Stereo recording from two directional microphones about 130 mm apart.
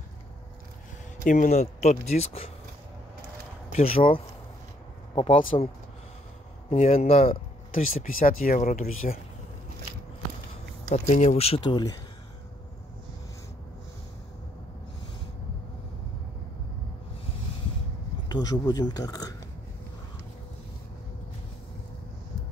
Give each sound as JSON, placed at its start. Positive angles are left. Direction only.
{"t": 1.2, "sound": "speech", "side_deg": 85}
{"t": 3.7, "sound": "speech", "side_deg": 50}
{"t": 5.4, "sound": "speech", "side_deg": 45}
{"t": 6.7, "sound": "speech", "side_deg": 60}
{"t": 7.7, "sound": "speech", "side_deg": 90}
{"t": 10.9, "sound": "speech", "side_deg": 65}
{"t": 11.6, "sound": "speech", "side_deg": 30}
{"t": 18.3, "sound": "speech", "side_deg": 30}